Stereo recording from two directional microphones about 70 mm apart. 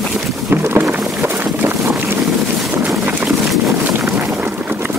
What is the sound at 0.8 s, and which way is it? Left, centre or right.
Boat, right.